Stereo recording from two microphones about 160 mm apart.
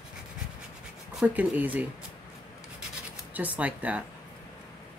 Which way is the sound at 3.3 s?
10° right (ahead or behind).